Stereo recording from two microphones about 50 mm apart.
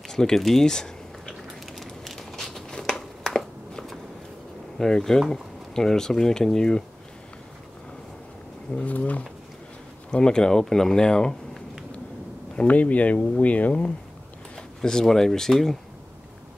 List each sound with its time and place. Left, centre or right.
0.1 s speech: centre
1.7 s a sound: centre
4.7 s speech: centre
8.8 s speech: left
10.1 s speech: centre
12.5 s speech: left
14.8 s speech: centre